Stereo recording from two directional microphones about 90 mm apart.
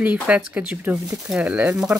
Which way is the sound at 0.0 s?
15° right (ahead or behind).